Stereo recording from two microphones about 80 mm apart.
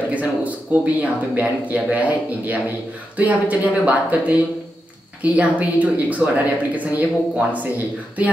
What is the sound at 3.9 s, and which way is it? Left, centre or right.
Speech, centre.